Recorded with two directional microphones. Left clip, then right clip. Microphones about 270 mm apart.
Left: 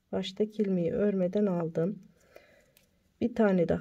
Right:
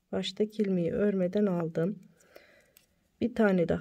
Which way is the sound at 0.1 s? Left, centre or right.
Centre.